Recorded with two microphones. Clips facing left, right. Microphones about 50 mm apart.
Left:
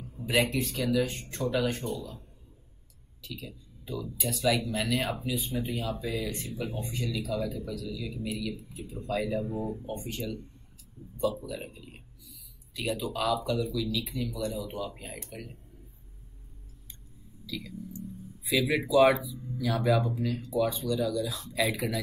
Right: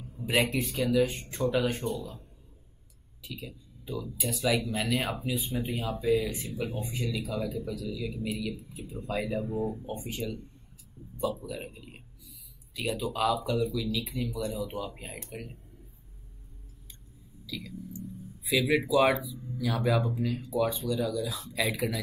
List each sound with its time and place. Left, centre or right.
0.2 s a man's voice: centre
3.2 s a man's voice: centre
11.4 s a man's voice: centre
17.5 s speech: centre